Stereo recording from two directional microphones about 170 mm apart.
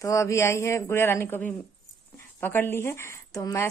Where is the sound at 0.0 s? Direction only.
15° left (ahead or behind).